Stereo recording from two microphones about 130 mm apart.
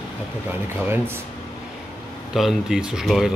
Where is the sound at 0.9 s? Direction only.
20° right (ahead or behind).